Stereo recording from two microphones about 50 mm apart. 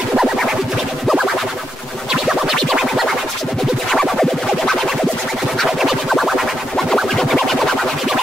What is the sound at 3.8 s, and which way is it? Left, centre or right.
Music, centre.